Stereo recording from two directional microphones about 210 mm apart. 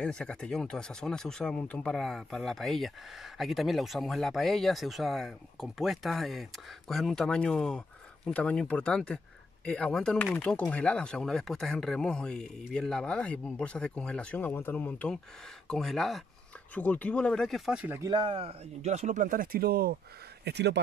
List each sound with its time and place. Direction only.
0.0 s speech: 5° left (ahead or behind)
18.1 s speech: 25° right (ahead or behind); by 20.8 s 55° right (ahead or behind)